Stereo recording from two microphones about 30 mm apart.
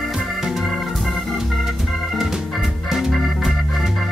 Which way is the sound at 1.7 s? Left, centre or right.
Centre.